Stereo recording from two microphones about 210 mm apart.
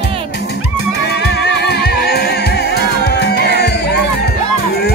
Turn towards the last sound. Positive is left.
turn(degrees=50)  # may be behind; listen again after turning